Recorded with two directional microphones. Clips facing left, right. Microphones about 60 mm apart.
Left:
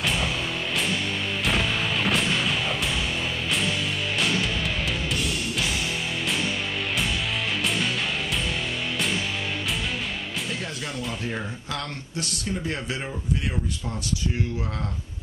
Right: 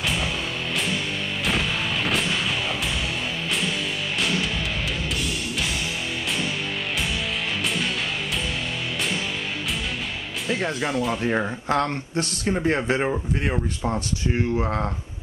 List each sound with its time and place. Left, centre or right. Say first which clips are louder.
0.0 s music: even; centre
1.4 s music: even; centre
10.9 s speech: right 8 dB; centre
11.2 s speech: right 8 dB; right